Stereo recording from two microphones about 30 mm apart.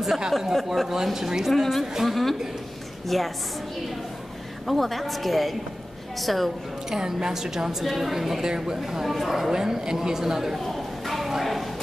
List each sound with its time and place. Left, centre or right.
0.5 s a woman's voice: centre
0.8 s a woman's voice: centre
1.5 s a woman's voice: centre
4.6 s a woman's voice: centre
6.9 s a woman's voice: centre
7.8 s a woman's voice: centre
8.4 s speech: centre
9.0 s a woman's voice: centre
9.5 s a woman's voice: centre
10.6 s clip-clop: centre